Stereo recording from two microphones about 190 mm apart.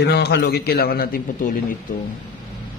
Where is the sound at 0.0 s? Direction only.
60° left (ahead or behind).